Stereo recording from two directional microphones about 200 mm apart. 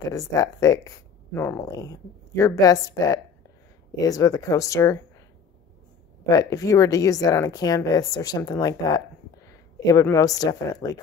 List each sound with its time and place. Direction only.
0.0 s speech: 15° left (ahead or behind)
6.2 s speech: 15° left (ahead or behind)